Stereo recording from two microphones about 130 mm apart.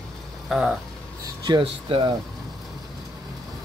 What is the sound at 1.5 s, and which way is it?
Speech, 40° right (ahead or behind).